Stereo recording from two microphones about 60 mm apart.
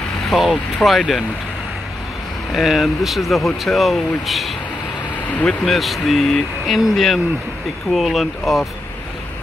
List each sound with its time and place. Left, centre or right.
0.3 s speech: centre
2.5 s speech: centre
5.3 s speech: left
5.7 s speech: centre